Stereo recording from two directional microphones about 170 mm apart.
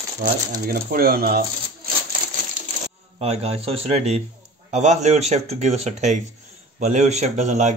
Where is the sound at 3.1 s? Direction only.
40° right (ahead or behind).